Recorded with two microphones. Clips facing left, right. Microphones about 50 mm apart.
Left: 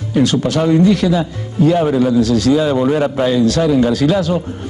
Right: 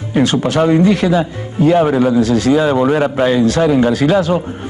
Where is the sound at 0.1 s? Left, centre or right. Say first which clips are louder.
Right 1 dB; right.